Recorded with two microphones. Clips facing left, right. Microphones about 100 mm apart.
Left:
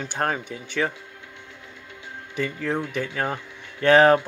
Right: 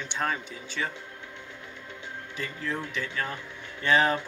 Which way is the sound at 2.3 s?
65° left (ahead or behind).